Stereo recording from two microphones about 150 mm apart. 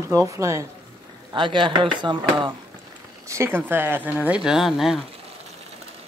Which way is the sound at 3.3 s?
15° right (ahead or behind).